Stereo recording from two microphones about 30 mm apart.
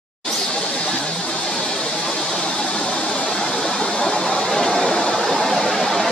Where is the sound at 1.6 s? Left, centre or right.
Centre.